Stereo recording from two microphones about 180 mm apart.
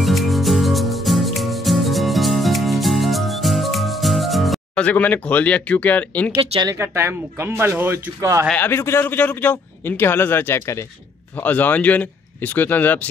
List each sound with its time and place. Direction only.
0.0 s music: centre (ahead or behind)
6.3 s speech: 30° right (ahead or behind)
6.7 s speech: 15° right (ahead or behind)
8.5 s a man's voice: 10° left (ahead or behind)